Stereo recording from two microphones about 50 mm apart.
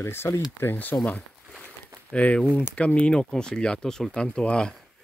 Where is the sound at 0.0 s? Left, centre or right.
Left.